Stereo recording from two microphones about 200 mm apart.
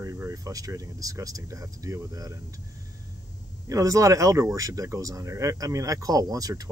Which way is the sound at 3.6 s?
15° right (ahead or behind).